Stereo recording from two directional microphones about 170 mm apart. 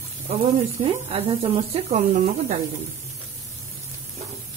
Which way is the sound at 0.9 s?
35° right (ahead or behind).